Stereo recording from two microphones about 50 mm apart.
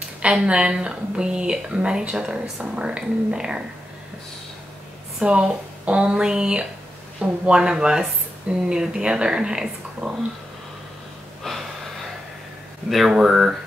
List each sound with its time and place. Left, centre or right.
0.3 s a woman's voice: centre
2.6 s a woman's voice: right
5.2 s a woman's voice: right
11.4 s gasp: centre
13.1 s a woman's voice: centre